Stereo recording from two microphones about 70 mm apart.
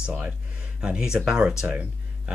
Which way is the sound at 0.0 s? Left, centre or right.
Centre.